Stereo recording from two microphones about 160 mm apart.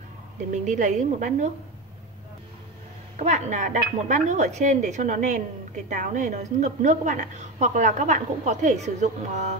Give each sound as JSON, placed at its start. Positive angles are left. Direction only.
{"t": 0.5, "sound": "a woman's voice", "side_deg": -50}
{"t": 3.2, "sound": "a woman's voice", "side_deg": -45}